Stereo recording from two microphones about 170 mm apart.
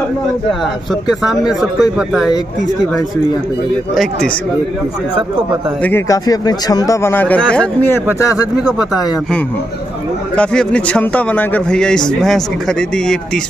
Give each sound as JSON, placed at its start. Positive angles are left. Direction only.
{"t": 1.6, "sound": "a man's voice", "side_deg": 0}
{"t": 3.9, "sound": "a man's voice", "side_deg": 0}
{"t": 5.8, "sound": "a man's voice", "side_deg": 10}
{"t": 8.7, "sound": "a man's voice", "side_deg": 0}